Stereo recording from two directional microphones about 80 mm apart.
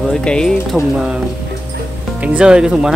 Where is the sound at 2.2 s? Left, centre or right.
Centre.